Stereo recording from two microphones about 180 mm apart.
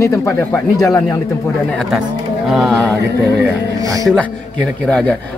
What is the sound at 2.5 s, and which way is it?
Speech, centre (ahead or behind).